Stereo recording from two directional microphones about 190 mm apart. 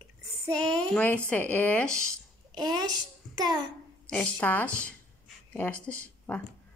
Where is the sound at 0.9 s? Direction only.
10° left (ahead or behind).